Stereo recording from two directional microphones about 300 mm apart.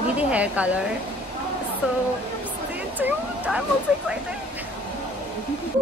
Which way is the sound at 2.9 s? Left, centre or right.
Centre.